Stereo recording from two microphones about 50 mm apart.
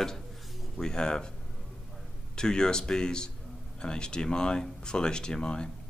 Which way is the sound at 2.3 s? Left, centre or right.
Centre.